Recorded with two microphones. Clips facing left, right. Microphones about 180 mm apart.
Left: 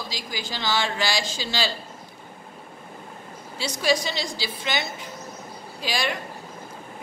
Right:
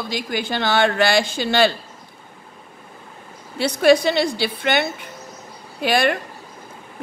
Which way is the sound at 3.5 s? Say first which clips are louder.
Right 9 dB; 60° right (ahead or behind).